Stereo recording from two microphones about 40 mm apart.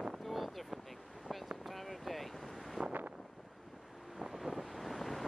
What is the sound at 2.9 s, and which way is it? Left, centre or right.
Wind noise, right.